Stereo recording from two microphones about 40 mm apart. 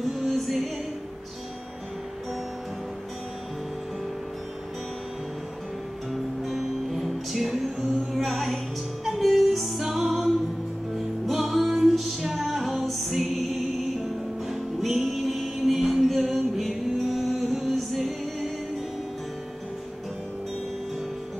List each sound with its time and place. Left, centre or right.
0.0 s music: centre
6.1 s music: centre